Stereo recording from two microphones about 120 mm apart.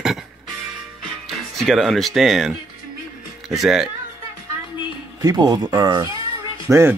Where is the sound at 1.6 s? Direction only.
Centre (ahead or behind).